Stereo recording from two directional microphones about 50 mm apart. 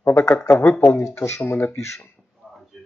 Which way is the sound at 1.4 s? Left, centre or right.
Left.